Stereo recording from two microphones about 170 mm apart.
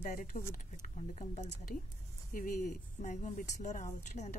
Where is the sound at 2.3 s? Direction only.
50° left (ahead or behind).